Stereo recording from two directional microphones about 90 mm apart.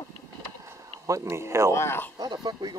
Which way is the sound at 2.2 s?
50° right (ahead or behind).